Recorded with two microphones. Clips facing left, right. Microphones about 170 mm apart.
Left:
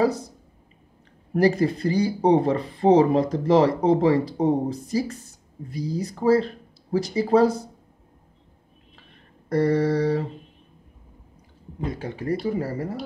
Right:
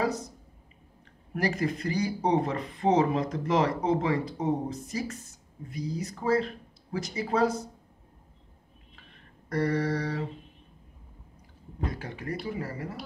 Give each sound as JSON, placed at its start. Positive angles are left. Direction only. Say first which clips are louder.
{"t": 0.0, "sound": "mantra", "louder": "left 7 dB", "side_deg": 30}
{"t": 1.3, "sound": "speech", "louder": "left 9 dB", "side_deg": 30}
{"t": 9.5, "sound": "mantra", "louder": "left 7 dB", "side_deg": 30}
{"t": 11.8, "sound": "speech", "louder": "left 6 dB", "side_deg": 25}